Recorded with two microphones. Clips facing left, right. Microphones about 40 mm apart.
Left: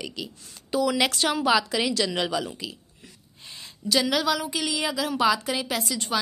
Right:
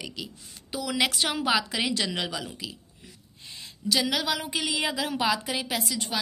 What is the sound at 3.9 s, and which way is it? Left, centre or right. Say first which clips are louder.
Speech: left 3 dB; centre.